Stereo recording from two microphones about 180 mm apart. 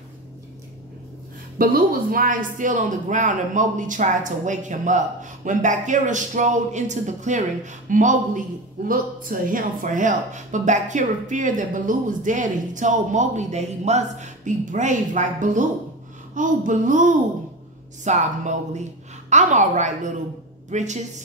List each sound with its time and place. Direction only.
1.6 s a man's voice: 55° right (ahead or behind)